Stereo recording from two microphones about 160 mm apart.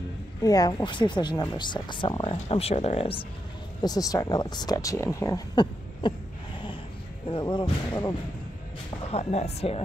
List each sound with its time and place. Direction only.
0.4 s speech: 25° left (ahead or behind)
2.4 s speech: 40° left (ahead or behind)
3.8 s speech: 20° left (ahead or behind)
7.2 s speech: 30° left (ahead or behind)
9.1 s speech: 40° left (ahead or behind)